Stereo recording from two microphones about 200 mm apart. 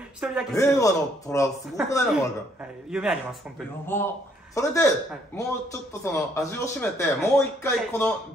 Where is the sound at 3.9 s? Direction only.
10° left (ahead or behind).